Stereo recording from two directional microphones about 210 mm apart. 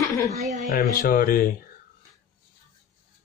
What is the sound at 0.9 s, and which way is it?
Speech, 45° left (ahead or behind).